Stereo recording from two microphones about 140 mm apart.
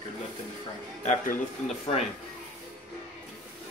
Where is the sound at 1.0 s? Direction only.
65° left (ahead or behind).